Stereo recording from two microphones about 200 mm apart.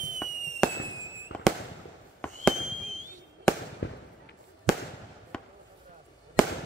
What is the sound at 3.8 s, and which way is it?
Fireworks, 65° left (ahead or behind).